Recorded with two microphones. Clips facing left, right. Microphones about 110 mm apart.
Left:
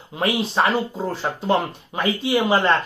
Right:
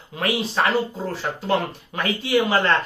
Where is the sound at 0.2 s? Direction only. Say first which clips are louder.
Left 2 dB; 20° left (ahead or behind).